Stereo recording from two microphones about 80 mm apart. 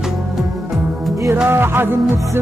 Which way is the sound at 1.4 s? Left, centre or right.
Right.